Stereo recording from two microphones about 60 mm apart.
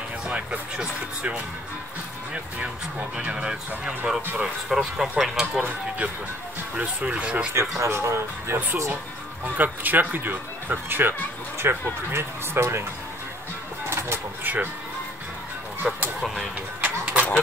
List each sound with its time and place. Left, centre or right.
0.3 s speech: centre
3.2 s speech: centre
6.8 s speech: right
7.8 s speech: right
9.6 s speech: right
13.8 s a sound: right
14.4 s speech: right
15.8 s speech: centre
16.8 s a sound: right